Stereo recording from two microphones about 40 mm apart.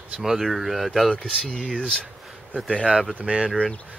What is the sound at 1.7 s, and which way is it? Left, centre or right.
Speech, centre.